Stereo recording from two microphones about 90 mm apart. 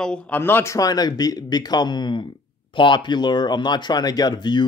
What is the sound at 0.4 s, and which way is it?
Speech, 25° left (ahead or behind).